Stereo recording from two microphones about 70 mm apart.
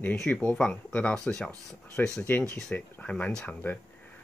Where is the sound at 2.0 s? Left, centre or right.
Left.